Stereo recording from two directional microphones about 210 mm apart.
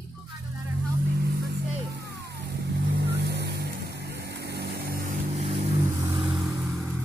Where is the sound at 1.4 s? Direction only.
50° right (ahead or behind).